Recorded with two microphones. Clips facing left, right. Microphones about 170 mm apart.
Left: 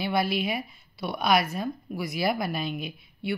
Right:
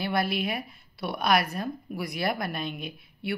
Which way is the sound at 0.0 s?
Centre (ahead or behind).